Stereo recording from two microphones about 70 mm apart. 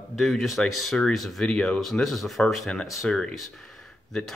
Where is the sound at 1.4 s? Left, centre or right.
Centre.